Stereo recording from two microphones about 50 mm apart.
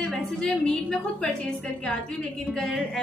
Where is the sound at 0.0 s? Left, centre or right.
Centre.